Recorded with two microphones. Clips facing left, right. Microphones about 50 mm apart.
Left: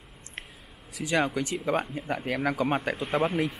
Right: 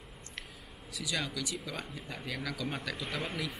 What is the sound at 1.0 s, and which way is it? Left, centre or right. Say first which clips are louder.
Speech: left 10 dB; left.